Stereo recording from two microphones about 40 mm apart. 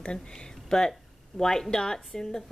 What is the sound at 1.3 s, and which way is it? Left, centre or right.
Speech, centre.